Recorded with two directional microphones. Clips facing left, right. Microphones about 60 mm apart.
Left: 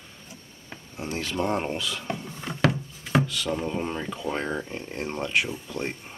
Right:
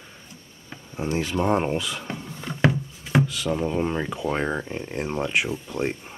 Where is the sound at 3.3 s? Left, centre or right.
Centre.